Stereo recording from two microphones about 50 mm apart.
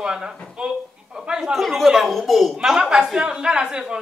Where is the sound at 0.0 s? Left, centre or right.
Centre.